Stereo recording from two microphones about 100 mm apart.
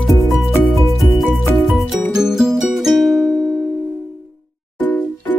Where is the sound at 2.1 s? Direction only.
5° right (ahead or behind).